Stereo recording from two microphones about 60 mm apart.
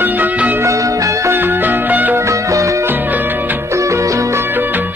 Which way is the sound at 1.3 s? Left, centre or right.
Right.